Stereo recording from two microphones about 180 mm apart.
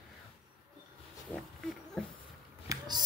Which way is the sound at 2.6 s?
20° right (ahead or behind).